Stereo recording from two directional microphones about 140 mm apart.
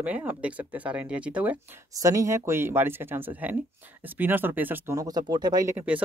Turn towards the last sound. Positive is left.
turn(degrees=-10)  # may be behind; listen again after turning